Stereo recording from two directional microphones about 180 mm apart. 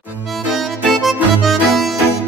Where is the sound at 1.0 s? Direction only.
Centre (ahead or behind).